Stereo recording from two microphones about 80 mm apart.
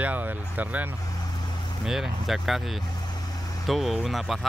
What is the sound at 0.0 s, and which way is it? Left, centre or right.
Speech, right.